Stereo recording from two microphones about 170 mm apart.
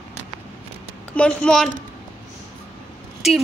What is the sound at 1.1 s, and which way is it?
Speech, 5° left (ahead or behind).